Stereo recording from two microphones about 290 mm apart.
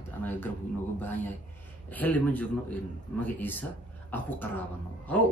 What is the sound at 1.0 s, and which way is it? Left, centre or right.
Speech, centre.